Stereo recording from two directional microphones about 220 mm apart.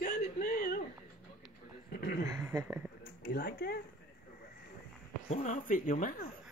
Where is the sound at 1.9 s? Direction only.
50° left (ahead or behind).